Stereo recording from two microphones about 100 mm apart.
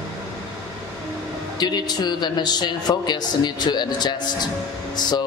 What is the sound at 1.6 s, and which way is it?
A woman's voice, 45° left (ahead or behind).